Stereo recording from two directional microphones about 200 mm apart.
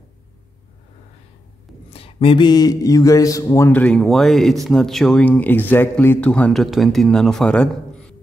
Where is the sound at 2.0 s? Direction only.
25° left (ahead or behind).